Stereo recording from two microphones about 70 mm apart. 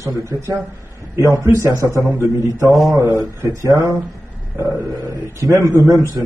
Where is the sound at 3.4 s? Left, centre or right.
Right.